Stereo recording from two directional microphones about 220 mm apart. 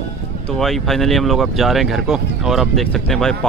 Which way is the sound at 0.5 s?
Centre (ahead or behind).